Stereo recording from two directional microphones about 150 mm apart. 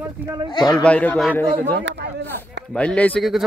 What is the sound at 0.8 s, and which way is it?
Speech, 10° left (ahead or behind).